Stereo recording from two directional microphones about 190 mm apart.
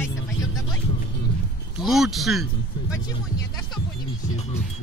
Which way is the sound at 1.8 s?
Centre (ahead or behind).